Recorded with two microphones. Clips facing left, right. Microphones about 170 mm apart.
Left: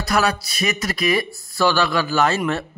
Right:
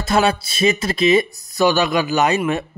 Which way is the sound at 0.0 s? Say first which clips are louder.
Right 3 dB; 25° right (ahead or behind).